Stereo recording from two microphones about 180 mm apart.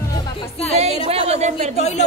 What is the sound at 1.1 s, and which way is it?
Speech, 35° right (ahead or behind).